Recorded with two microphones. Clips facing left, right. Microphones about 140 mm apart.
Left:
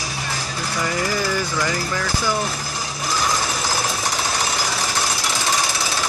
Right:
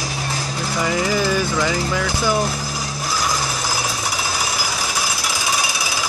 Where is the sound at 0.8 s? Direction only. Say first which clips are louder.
Right 4 dB; 15° right (ahead or behind).